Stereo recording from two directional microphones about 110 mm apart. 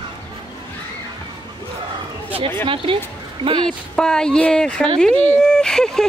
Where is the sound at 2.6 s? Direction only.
55° right (ahead or behind).